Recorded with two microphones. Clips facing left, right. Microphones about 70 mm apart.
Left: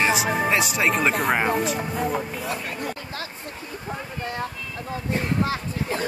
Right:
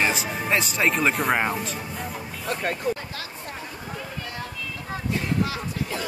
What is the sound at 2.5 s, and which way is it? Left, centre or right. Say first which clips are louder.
Speech: right 3 dB; right.